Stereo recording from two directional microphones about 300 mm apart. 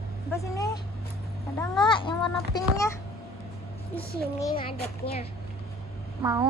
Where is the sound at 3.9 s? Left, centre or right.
Centre.